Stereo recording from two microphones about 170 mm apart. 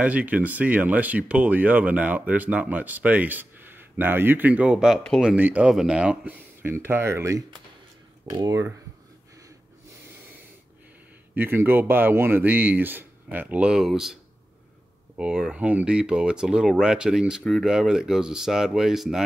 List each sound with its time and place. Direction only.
0.0 s speech: 10° right (ahead or behind)
11.3 s speech: 15° right (ahead or behind)
15.1 s speech: 5° right (ahead or behind)